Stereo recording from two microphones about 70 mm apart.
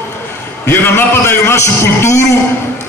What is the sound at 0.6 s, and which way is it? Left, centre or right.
A man's voice, left.